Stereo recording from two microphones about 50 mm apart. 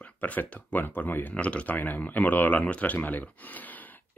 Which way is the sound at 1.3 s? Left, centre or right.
Left.